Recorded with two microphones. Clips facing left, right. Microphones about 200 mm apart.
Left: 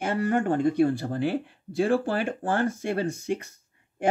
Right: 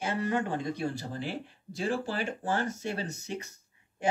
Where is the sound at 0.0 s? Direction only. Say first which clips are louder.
Left 5 dB; 50° left (ahead or behind).